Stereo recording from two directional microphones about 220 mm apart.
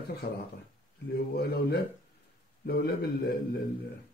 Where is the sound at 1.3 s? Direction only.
45° left (ahead or behind).